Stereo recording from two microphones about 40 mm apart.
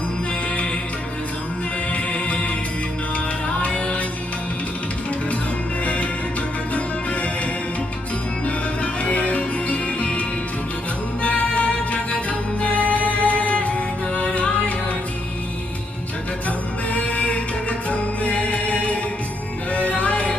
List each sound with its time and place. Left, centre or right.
1.9 s music: left
3.4 s music: left
8.5 s music: left
11.2 s music: left
16.4 s music: left